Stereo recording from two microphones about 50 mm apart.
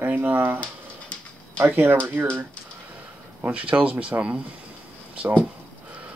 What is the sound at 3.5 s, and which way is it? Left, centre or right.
Speech, right.